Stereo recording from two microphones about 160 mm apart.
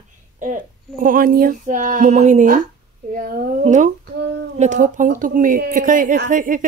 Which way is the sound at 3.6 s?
50° right (ahead or behind).